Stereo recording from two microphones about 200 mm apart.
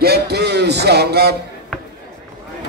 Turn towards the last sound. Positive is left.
turn(degrees=-55)  # may be behind; listen again after turning